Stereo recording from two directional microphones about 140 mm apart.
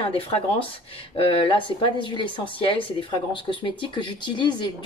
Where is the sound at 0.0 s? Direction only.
40° left (ahead or behind).